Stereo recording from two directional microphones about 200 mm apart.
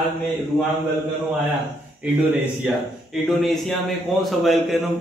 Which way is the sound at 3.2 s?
Centre (ahead or behind).